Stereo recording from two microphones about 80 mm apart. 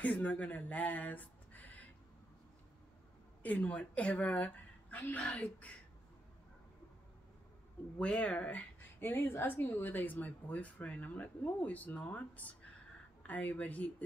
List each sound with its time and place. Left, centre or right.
0.0 s speech: centre
3.4 s speech: centre
8.0 s speech: centre